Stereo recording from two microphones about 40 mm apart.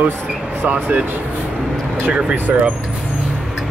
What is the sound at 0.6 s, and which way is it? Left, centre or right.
Speech, right.